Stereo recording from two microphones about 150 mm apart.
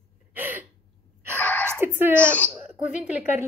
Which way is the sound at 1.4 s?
10° left (ahead or behind).